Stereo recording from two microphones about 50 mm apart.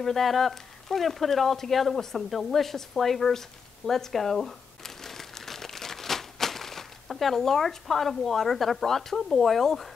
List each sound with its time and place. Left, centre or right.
0.0 s speech: centre